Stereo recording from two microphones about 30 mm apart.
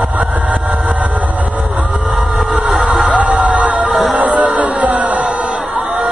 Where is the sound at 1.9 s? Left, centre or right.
Right.